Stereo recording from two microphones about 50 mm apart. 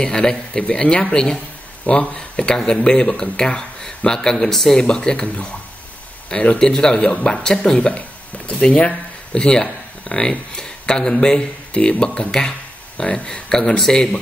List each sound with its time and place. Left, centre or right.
0.0 s speech: centre
4.8 s speech: centre